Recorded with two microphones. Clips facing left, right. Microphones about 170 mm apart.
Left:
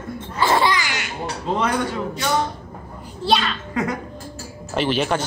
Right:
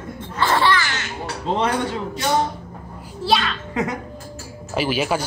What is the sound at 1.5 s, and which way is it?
Speech, 25° right (ahead or behind).